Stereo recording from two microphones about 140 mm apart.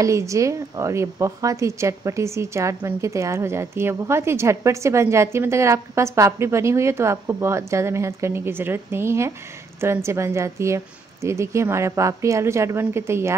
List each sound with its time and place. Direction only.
0.0 s a woman's voice: 20° right (ahead or behind)